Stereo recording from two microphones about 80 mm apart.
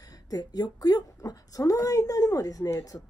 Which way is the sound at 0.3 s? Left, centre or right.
Left.